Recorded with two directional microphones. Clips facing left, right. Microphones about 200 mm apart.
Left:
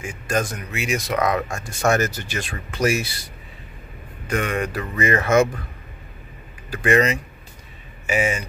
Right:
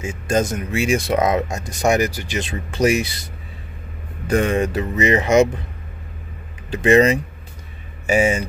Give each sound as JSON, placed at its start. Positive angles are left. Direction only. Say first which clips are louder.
{"t": 0.0, "sound": "speech", "louder": "right 4 dB", "side_deg": -25}
{"t": 4.3, "sound": "speech", "louder": "right 6 dB", "side_deg": -30}
{"t": 6.7, "sound": "speech", "louder": "right 5 dB", "side_deg": -25}